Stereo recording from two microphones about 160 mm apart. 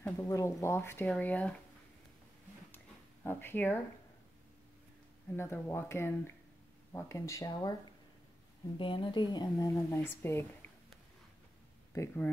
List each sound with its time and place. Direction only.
0.0 s speech: 15° left (ahead or behind)
3.3 s speech: 15° left (ahead or behind)
5.3 s speech: 15° left (ahead or behind)
8.7 s speech: 30° left (ahead or behind); by 10.7 s 15° left (ahead or behind)
11.9 s speech: 15° left (ahead or behind)